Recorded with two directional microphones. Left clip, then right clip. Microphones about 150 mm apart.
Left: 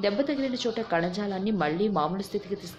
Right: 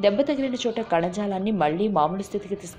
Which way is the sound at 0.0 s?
15° right (ahead or behind).